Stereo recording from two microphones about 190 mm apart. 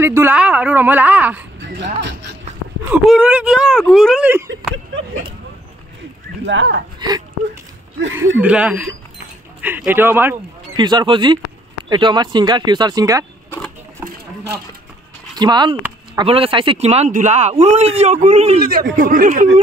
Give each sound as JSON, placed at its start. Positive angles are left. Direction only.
{"t": 0.0, "sound": "a woman's voice", "side_deg": -10}
{"t": 1.8, "sound": "speech", "side_deg": -70}
{"t": 2.9, "sound": "speech", "side_deg": -5}
{"t": 6.4, "sound": "speech", "side_deg": -75}
{"t": 7.0, "sound": "speech", "side_deg": -20}
{"t": 8.4, "sound": "a woman's voice", "side_deg": -5}
{"t": 10.8, "sound": "speech", "side_deg": -20}
{"t": 14.0, "sound": "a sound", "side_deg": -60}
{"t": 15.3, "sound": "speech", "side_deg": -20}
{"t": 18.6, "sound": "speech", "side_deg": -50}